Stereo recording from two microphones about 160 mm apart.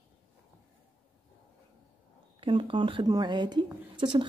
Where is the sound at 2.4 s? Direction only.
30° right (ahead or behind).